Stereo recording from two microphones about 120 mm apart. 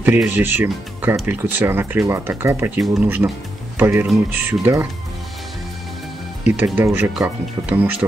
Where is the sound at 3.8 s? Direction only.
20° right (ahead or behind).